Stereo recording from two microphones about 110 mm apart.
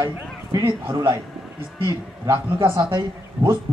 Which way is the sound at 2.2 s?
25° right (ahead or behind).